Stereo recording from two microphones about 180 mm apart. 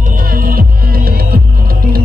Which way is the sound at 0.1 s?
50° right (ahead or behind).